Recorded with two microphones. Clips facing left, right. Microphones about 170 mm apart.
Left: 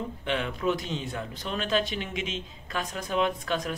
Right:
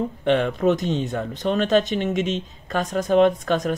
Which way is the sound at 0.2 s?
50° right (ahead or behind).